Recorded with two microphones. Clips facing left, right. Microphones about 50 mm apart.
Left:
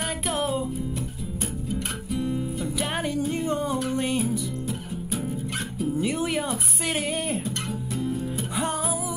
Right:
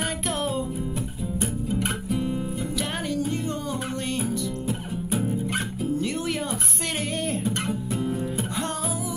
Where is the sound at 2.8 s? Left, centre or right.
Centre.